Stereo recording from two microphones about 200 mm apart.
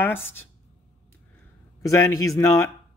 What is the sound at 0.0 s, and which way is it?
Speech, 10° left (ahead or behind).